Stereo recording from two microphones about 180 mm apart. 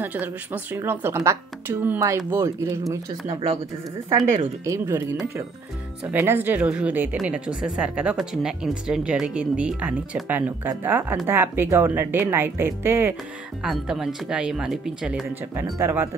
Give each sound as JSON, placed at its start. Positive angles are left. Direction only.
{"t": 0.0, "sound": "speech", "side_deg": -10}
{"t": 4.6, "sound": "speech", "side_deg": -15}
{"t": 6.1, "sound": "speech", "side_deg": -10}
{"t": 13.6, "sound": "speech", "side_deg": 0}
{"t": 15.6, "sound": "speech", "side_deg": -15}